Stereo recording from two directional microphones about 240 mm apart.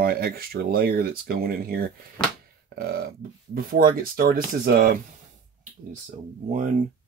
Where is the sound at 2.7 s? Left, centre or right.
Right.